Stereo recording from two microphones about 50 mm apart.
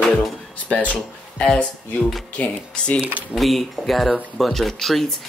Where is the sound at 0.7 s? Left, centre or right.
Left.